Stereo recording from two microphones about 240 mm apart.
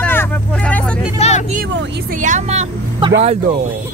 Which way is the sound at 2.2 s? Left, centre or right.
Right.